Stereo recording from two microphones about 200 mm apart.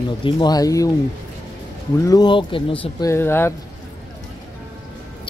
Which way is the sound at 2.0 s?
20° left (ahead or behind).